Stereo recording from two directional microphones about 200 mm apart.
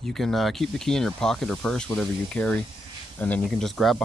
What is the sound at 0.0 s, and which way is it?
Speech, centre (ahead or behind).